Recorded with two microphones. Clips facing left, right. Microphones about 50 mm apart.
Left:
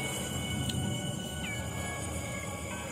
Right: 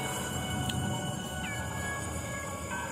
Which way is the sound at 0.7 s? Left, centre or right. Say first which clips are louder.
Right 1 dB; centre.